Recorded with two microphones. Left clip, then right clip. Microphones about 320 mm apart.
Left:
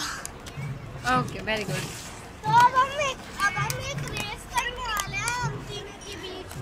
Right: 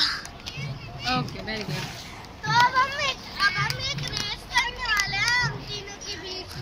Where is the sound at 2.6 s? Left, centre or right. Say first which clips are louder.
Right 1 dB; centre.